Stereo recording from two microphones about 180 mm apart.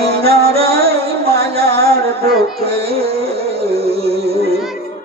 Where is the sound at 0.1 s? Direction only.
60° right (ahead or behind).